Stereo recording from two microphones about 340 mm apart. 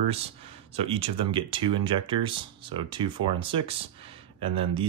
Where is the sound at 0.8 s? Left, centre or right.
Centre.